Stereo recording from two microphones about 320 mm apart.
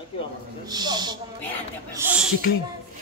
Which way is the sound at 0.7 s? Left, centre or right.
Centre.